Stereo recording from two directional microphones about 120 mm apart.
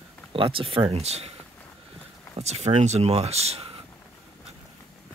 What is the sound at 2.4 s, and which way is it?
Speech, 65° right (ahead or behind).